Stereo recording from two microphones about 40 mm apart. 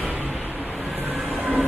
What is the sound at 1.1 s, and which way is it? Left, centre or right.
Train, centre.